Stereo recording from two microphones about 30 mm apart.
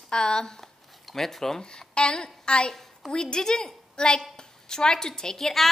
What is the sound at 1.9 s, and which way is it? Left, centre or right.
A woman's voice, left.